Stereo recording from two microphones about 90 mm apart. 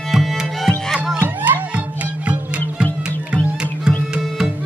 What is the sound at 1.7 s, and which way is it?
Music, 15° right (ahead or behind).